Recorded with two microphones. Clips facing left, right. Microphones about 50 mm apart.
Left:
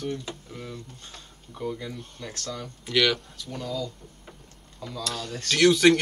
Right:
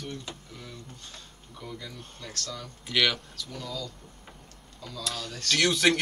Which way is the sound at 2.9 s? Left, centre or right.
Centre.